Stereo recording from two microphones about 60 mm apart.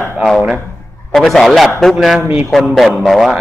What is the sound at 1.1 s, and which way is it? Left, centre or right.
A man's voice, centre.